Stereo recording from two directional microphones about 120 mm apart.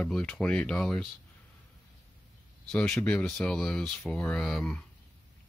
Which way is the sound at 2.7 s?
10° left (ahead or behind).